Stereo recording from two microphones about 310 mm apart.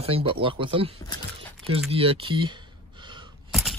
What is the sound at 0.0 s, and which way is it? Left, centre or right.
Speech, centre.